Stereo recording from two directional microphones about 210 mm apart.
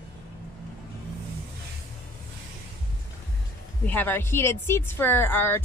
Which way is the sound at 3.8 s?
10° left (ahead or behind).